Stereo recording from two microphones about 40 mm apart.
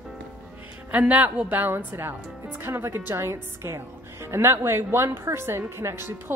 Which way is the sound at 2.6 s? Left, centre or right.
Right.